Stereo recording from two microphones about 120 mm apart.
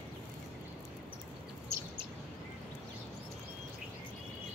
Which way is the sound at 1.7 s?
25° right (ahead or behind).